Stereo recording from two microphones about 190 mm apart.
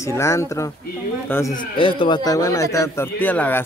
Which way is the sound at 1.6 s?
25° left (ahead or behind).